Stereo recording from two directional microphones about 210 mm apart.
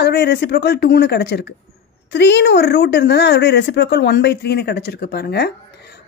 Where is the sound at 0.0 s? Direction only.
50° left (ahead or behind).